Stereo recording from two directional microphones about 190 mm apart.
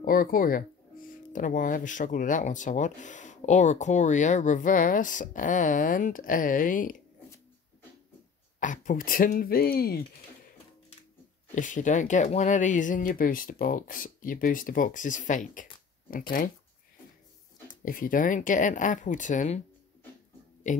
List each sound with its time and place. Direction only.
0.0 s speech: 50° left (ahead or behind)
8.5 s speech: 40° left (ahead or behind)
11.5 s speech: 40° left (ahead or behind)
17.8 s speech: 45° left (ahead or behind)